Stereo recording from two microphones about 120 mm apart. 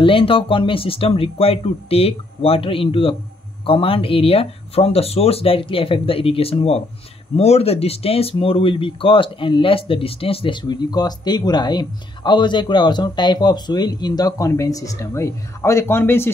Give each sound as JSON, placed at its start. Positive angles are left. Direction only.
{"t": 0.0, "sound": "speech", "side_deg": 50}